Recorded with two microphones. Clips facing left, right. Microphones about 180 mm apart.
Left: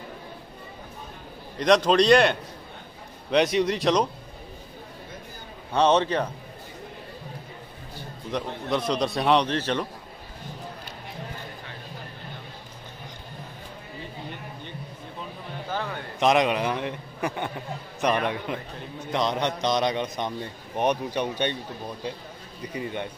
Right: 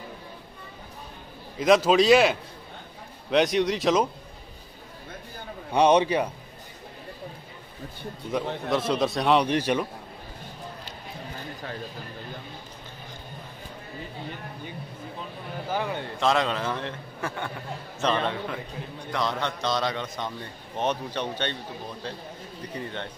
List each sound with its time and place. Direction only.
1.6 s a man's voice: 5° right (ahead or behind)
5.7 s a man's voice: 15° right (ahead or behind)
8.3 s a man's voice: 5° right (ahead or behind)
9.5 s a man's voice: 10° right (ahead or behind)
15.7 s a man's voice: 15° right (ahead or behind)
16.2 s a man's voice: 15° left (ahead or behind)
22.6 s a man's voice: 10° left (ahead or behind)